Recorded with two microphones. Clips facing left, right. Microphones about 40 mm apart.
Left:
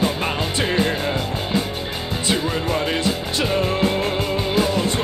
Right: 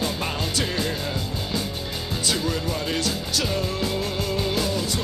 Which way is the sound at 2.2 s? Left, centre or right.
Left.